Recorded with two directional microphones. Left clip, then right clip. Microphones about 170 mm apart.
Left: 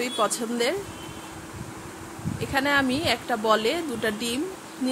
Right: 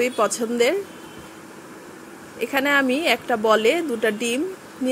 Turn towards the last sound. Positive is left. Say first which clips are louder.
# right 5 dB
turn(degrees=-10)  # may be behind; listen again after turning